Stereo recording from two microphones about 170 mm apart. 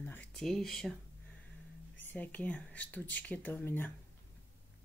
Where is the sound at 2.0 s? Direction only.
10° left (ahead or behind).